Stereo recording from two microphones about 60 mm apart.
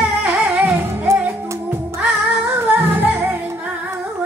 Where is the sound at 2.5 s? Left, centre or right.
Right.